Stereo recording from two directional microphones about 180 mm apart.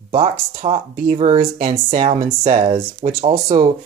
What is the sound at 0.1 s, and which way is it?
Speech, 30° right (ahead or behind).